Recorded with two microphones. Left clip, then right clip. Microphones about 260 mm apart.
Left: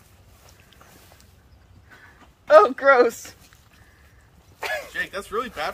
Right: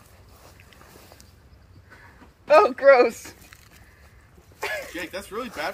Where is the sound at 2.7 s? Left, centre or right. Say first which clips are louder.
Right 1 dB; centre.